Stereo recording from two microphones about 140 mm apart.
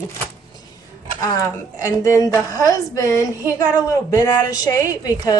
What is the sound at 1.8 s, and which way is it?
Speech, 25° left (ahead or behind).